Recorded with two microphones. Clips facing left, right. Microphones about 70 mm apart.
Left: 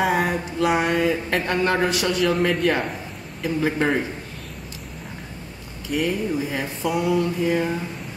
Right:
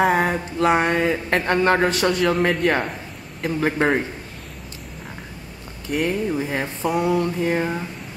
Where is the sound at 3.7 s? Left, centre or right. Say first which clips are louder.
Right 4 dB; right.